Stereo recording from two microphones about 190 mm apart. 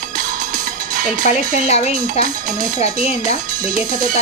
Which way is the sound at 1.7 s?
35° left (ahead or behind).